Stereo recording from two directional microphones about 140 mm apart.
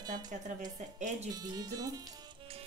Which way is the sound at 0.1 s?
65° right (ahead or behind).